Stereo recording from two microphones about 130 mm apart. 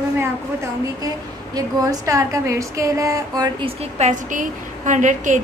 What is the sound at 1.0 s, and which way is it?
A woman's voice, 30° right (ahead or behind).